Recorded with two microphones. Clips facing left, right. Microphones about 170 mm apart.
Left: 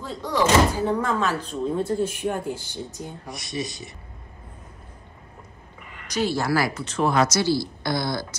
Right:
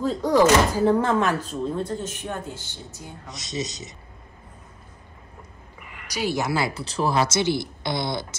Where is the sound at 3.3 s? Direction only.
20° right (ahead or behind).